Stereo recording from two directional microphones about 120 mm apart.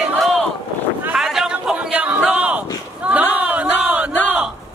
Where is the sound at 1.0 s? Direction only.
5° right (ahead or behind).